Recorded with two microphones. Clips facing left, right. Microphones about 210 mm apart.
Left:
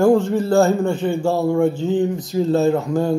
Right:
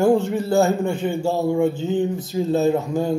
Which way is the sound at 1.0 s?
5° right (ahead or behind).